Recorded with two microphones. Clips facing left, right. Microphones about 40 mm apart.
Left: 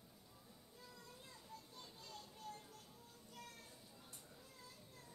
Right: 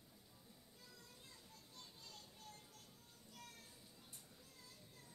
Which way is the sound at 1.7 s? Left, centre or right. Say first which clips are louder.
Left 4 dB; centre.